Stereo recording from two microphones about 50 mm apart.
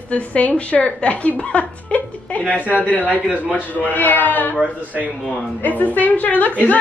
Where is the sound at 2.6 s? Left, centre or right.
Right.